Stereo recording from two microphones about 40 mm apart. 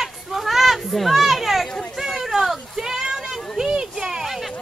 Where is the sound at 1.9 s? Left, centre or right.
Centre.